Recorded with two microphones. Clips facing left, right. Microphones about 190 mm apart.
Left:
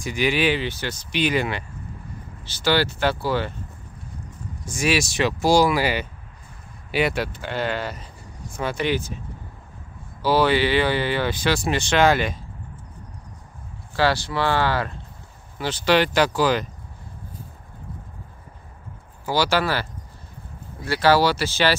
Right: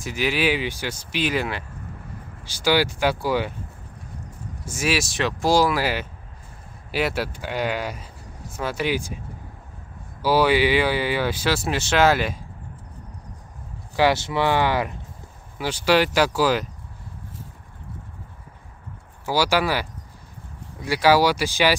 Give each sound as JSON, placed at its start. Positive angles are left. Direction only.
{"t": 0.0, "sound": "speech", "side_deg": -5}
{"t": 4.6, "sound": "speech", "side_deg": -5}
{"t": 10.2, "sound": "speech", "side_deg": -10}
{"t": 13.9, "sound": "speech", "side_deg": -20}
{"t": 19.2, "sound": "speech", "side_deg": -10}